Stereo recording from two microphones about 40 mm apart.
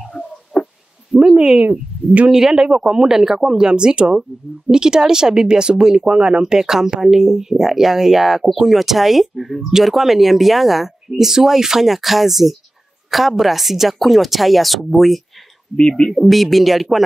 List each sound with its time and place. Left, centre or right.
0.5 s a sound: left
1.1 s speech: right
1.6 s speech: right
2.2 s speech: centre